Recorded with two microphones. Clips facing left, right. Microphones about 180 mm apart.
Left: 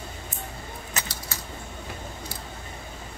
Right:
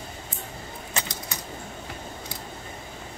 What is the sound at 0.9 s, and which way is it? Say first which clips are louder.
Keys jangling: right 3 dB; 20° right (ahead or behind).